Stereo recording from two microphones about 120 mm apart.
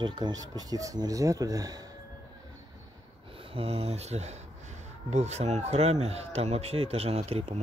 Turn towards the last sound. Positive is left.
turn(degrees=-60)  # may be behind; listen again after turning